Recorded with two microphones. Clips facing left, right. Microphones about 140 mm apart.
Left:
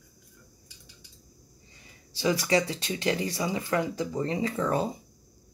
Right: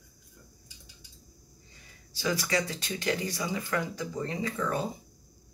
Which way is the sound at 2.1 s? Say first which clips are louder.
Left 5 dB; 30° left (ahead or behind).